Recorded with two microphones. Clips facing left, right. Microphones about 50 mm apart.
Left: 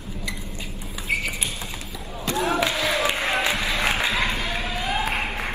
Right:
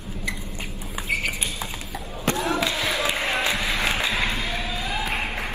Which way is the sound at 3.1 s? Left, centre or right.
Left.